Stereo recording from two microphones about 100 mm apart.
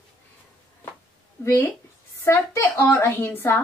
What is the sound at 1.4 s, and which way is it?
A woman's voice, 30° left (ahead or behind).